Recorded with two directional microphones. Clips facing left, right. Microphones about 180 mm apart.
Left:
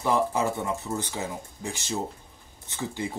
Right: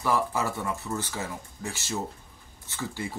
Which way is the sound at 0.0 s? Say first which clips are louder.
Left 2 dB; 20° left (ahead or behind).